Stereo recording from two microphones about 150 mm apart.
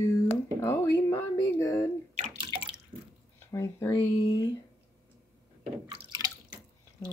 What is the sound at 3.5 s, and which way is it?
Speech, 20° left (ahead or behind).